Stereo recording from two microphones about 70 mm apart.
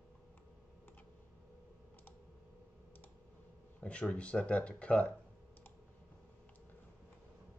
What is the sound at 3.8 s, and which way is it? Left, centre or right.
Speech, centre.